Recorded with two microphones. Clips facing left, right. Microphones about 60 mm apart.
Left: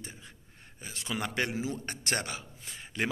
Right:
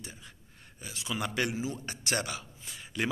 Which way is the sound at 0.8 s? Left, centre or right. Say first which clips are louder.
Even; left.